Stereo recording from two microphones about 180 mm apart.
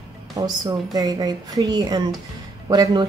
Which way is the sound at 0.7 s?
20° right (ahead or behind).